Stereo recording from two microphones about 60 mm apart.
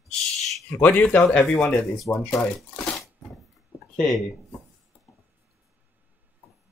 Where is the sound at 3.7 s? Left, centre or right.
Right.